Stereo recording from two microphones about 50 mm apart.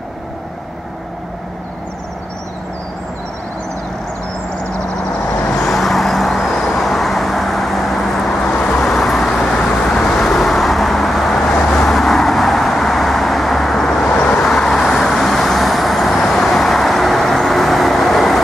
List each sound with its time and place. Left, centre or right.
5.6 s vehicle: centre
8.5 s vehicle: left
8.7 s vehicle: centre
11.5 s vehicle: left
11.8 s vehicle: centre
14.1 s vehicle: left
14.4 s vehicle: centre